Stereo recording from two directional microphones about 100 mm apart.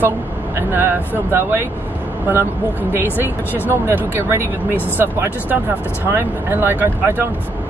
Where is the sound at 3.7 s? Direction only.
25° right (ahead or behind).